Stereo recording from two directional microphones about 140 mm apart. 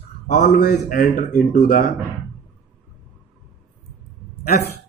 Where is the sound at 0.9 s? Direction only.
85° left.